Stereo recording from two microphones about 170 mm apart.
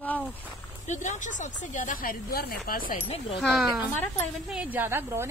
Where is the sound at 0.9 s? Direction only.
45° left (ahead or behind).